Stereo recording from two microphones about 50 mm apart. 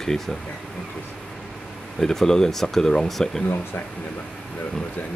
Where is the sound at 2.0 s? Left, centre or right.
Centre.